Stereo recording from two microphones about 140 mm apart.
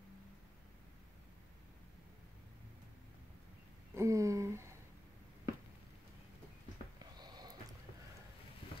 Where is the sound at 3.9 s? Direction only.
20° right (ahead or behind).